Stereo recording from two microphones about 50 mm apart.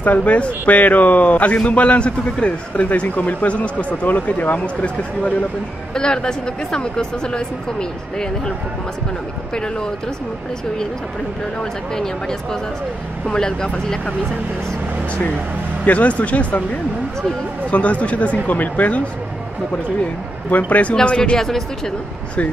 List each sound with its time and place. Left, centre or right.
0.0 s a man's voice: left
5.9 s speech: centre
9.5 s speech: centre
11.9 s speech: centre
15.8 s a man's voice: left
17.6 s a man's voice: left
20.9 s a man's voice: centre
21.4 s speech: centre